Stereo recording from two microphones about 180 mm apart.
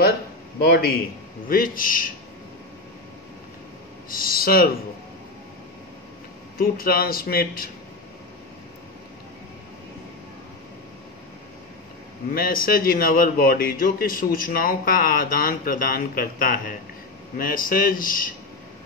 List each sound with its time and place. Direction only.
0.7 s a man's voice: 60° left (ahead or behind)
1.5 s a man's voice: 50° left (ahead or behind)
4.1 s a man's voice: 55° left (ahead or behind)
6.6 s a man's voice: 55° left (ahead or behind)
12.3 s a man's voice: 55° left (ahead or behind)